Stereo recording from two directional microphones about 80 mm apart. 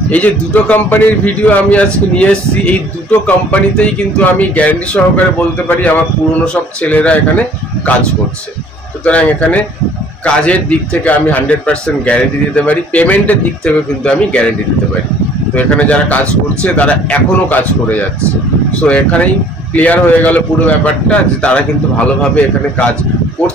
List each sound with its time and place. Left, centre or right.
0.1 s a man's voice: centre
15.5 s a man's voice: centre